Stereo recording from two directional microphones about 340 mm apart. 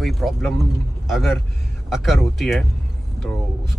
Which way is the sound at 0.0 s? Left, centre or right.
Centre.